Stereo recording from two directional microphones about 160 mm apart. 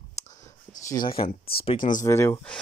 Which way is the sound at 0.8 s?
30° left (ahead or behind).